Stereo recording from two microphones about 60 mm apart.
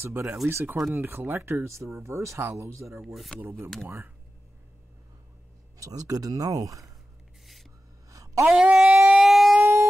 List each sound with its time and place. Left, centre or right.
0.5 s speech: right
3.0 s speech: centre
3.3 s speech: right
5.8 s speech: right
8.1 s a sound: right
8.5 s a sound: centre
9.1 s siren: centre
9.6 s siren: right